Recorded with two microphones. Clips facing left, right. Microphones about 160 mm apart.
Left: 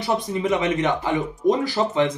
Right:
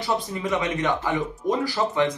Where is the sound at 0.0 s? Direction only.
20° left (ahead or behind).